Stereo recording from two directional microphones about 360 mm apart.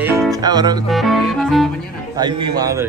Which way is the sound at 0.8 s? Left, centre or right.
Centre.